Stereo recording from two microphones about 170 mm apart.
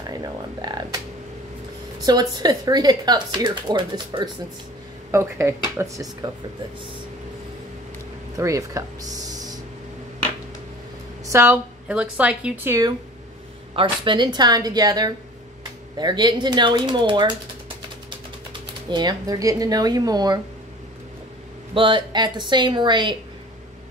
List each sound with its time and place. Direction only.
0.6 s speech: 25° right (ahead or behind)
2.0 s speech: 20° right (ahead or behind)
5.1 s a woman's voice: 15° right (ahead or behind)
8.4 s speech: 20° right (ahead or behind)
11.2 s a woman's voice: 15° right (ahead or behind)
13.7 s speech: 30° right (ahead or behind)
21.7 s speech: 30° right (ahead or behind)